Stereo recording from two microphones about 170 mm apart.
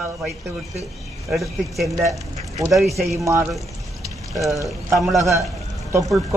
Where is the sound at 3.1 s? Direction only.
15° right (ahead or behind).